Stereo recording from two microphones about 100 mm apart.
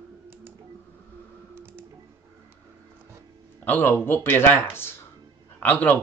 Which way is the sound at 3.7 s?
20° left (ahead or behind).